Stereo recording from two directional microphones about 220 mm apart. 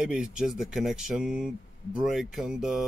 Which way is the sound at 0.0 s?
5° right (ahead or behind).